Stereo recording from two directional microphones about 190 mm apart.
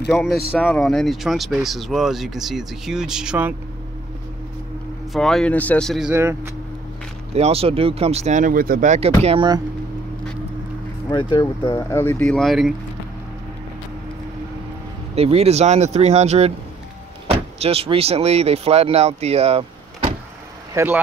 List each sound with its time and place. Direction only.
0.1 s speech: centre (ahead or behind)
5.1 s speech: centre (ahead or behind)
6.1 s speech: 15° right (ahead or behind)
7.3 s speech: 30° right (ahead or behind)
11.1 s speech: 25° left (ahead or behind)
12.0 s speech: 10° left (ahead or behind)
15.1 s speech: 35° right (ahead or behind)
20.7 s speech: 10° right (ahead or behind)